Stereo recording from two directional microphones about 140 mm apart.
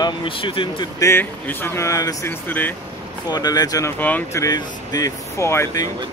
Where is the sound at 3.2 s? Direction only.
30° left (ahead or behind); by 4.4 s 15° left (ahead or behind).